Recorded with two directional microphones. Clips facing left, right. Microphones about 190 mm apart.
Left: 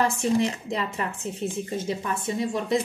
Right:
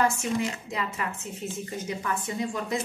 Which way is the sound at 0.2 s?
35° left (ahead or behind).